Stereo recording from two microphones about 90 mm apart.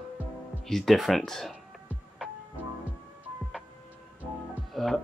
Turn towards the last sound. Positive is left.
turn(degrees=0)  # may be behind; listen again after turning